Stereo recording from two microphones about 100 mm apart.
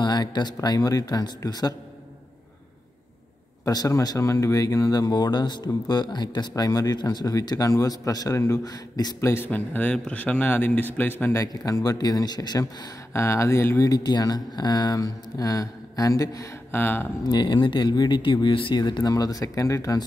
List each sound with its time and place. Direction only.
0.0 s speech: 45° left (ahead or behind)
3.6 s speech: 35° left (ahead or behind)
9.3 s a man's voice: 20° left (ahead or behind)
11.3 s speech: 40° left (ahead or behind)
13.1 s speech: 30° left (ahead or behind)
16.7 s a man's voice: 20° left (ahead or behind)
17.3 s speech: 50° left (ahead or behind)